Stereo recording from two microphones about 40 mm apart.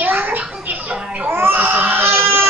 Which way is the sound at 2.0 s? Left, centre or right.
Right.